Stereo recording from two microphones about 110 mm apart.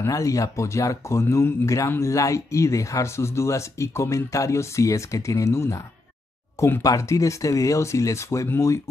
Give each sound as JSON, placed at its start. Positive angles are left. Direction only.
{"t": 0.0, "sound": "speech", "side_deg": 30}